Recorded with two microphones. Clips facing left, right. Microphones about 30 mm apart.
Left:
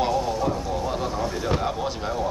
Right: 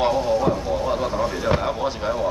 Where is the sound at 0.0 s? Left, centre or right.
Centre.